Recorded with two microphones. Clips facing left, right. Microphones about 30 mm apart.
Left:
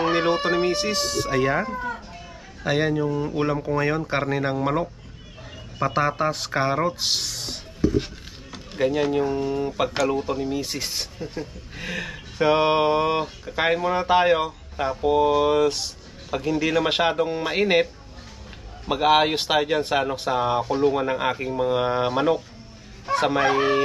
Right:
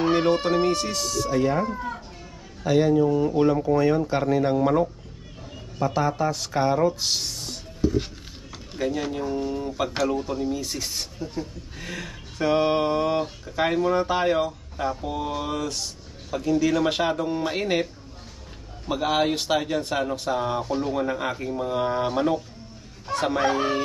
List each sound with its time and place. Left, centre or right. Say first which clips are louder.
0.0 s speech: even; centre
1.0 s speech: right 1 dB; left
2.6 s speech: right 3 dB; left
3.1 s speech: right 4 dB; centre
3.7 s speech: right 2 dB; left
5.8 s speech: left 1 dB; left
6.3 s speech: even; left
7.9 s a sound: left 2 dB; centre
8.7 s speech: left 5 dB; left
18.9 s speech: left 4 dB; left